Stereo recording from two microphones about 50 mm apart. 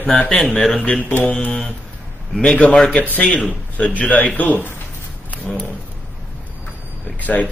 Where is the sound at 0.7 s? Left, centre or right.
Centre.